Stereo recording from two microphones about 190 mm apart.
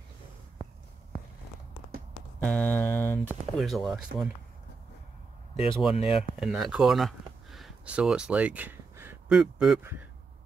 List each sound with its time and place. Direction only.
2.4 s a sound: 5° left (ahead or behind)
3.3 s speech: centre (ahead or behind)
5.6 s speech: 30° left (ahead or behind)
6.1 s speech: centre (ahead or behind)